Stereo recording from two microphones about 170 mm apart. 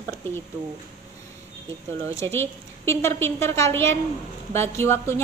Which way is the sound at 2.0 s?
15° left (ahead or behind).